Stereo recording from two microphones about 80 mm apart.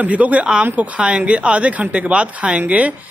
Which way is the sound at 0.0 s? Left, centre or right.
Centre.